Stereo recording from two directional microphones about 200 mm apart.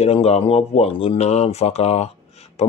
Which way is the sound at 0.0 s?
30° left (ahead or behind).